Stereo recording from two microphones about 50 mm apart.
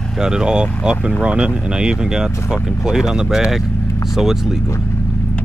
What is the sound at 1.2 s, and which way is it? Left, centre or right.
Speech, right.